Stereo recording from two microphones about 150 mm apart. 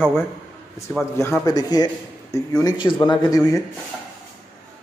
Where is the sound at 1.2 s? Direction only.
20° left (ahead or behind).